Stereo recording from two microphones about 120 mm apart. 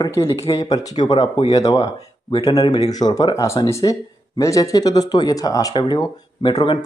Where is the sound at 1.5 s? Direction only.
30° left (ahead or behind).